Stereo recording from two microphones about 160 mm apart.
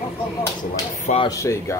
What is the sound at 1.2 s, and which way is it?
Speech, 20° left (ahead or behind).